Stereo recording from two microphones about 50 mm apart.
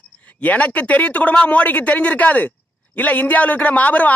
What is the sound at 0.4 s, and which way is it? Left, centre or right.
Speech, left.